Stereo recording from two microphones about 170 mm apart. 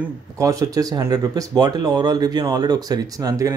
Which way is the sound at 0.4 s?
20° right (ahead or behind).